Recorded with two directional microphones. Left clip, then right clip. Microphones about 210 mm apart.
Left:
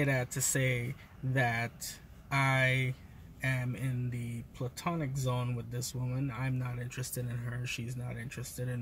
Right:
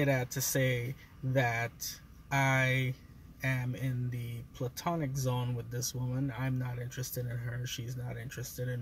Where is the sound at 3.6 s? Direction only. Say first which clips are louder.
Even; centre (ahead or behind).